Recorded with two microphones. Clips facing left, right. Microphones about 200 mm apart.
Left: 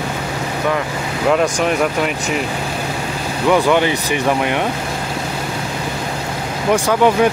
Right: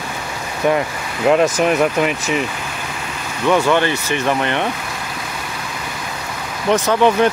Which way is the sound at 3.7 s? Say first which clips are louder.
Left 1 dB; 15° left (ahead or behind).